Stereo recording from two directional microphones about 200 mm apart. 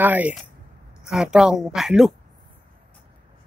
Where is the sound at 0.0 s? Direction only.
10° right (ahead or behind).